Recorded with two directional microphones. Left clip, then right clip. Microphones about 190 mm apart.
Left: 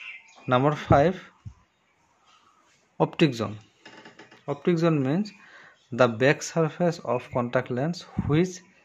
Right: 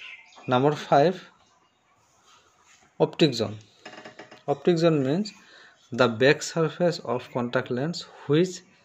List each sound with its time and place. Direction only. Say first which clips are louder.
0.5 s speech: even; 40° left (ahead or behind)
3.0 s speech: right 1 dB; 40° left (ahead or behind)